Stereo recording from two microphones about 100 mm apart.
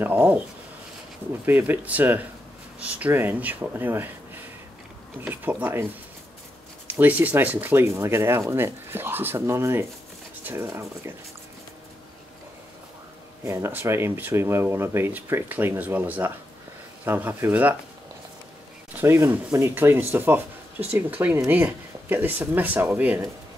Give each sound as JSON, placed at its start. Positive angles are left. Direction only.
{"t": 0.0, "sound": "speech", "side_deg": -15}
{"t": 1.4, "sound": "speech", "side_deg": -20}
{"t": 5.3, "sound": "speech", "side_deg": -20}
{"t": 6.9, "sound": "speech", "side_deg": -20}
{"t": 13.4, "sound": "speech", "side_deg": -25}
{"t": 18.9, "sound": "speech", "side_deg": -25}